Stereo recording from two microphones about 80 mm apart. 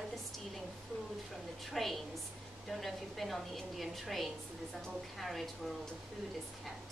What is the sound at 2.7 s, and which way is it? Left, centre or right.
Speech, centre.